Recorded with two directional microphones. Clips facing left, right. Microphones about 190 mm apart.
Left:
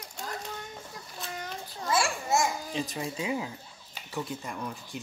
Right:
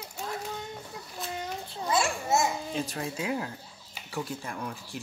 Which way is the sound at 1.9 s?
20° right (ahead or behind).